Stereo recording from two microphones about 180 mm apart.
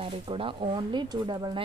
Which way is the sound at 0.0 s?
30° right (ahead or behind).